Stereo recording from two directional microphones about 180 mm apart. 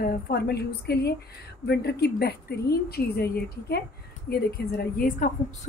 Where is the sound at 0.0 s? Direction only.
55° left (ahead or behind).